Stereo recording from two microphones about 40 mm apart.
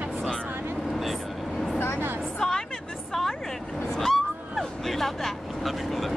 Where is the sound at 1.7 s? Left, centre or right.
Left.